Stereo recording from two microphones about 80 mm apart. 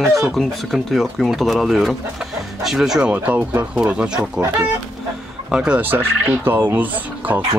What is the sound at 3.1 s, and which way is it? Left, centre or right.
Speech, right.